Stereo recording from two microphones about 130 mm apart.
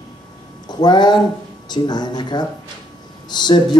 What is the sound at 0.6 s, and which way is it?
Speech, 35° left (ahead or behind).